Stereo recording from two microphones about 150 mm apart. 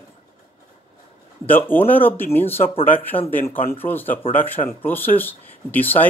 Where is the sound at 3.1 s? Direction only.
35° left (ahead or behind).